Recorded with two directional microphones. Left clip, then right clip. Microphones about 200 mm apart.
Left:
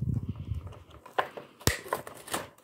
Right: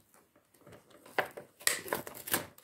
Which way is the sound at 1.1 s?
10° right (ahead or behind).